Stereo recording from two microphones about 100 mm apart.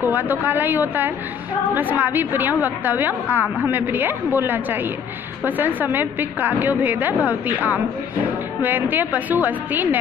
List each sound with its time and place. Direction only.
0.0 s a woman's voice: 20° right (ahead or behind)